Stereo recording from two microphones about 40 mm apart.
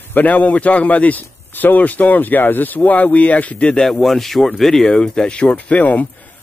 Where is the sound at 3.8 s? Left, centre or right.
Centre.